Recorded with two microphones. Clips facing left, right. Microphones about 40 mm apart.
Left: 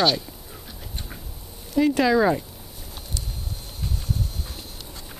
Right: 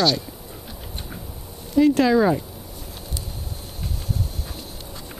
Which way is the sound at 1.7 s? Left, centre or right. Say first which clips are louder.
Right 3 dB; centre.